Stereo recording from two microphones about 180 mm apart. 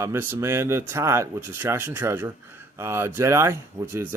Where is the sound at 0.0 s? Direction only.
15° right (ahead or behind).